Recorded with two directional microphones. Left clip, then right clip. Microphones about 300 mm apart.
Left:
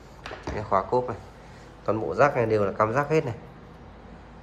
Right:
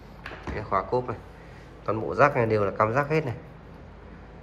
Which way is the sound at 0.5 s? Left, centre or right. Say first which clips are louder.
Left 2 dB; centre.